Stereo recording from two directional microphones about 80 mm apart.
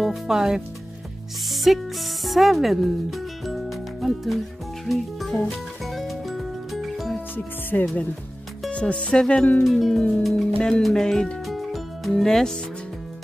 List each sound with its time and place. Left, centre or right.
0.0 s speech: centre
1.5 s music: centre
2.2 s speech: centre
4.8 s music: centre
7.7 s speech: centre
9.7 s music: centre
10.3 s speech: centre